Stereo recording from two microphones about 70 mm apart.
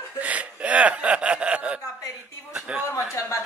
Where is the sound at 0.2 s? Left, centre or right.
Centre.